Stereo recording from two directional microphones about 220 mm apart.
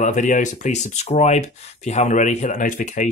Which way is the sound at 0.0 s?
35° left (ahead or behind).